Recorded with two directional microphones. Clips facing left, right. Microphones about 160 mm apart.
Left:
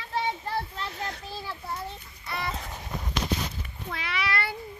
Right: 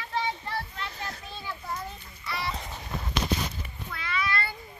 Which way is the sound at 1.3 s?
30° left (ahead or behind).